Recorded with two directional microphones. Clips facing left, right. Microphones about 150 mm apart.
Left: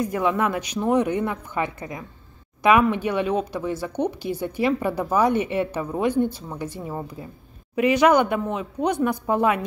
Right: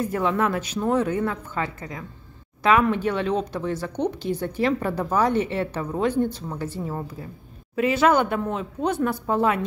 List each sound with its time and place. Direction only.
0.0 s a woman's voice: 15° left (ahead or behind)